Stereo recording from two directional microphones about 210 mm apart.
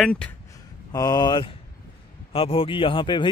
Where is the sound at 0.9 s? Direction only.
20° left (ahead or behind).